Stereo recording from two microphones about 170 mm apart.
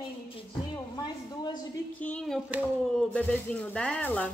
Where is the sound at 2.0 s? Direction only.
5° left (ahead or behind).